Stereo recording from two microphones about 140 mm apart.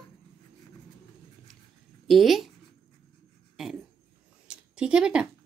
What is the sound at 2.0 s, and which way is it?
Speech, centre (ahead or behind).